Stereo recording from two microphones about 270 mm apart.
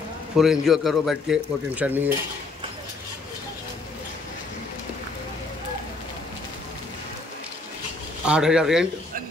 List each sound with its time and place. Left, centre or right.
0.4 s speech: centre
8.3 s speech: centre